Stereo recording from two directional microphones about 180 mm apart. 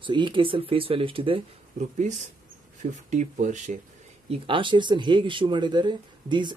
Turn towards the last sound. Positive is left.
turn(degrees=-25)  # may be behind; listen again after turning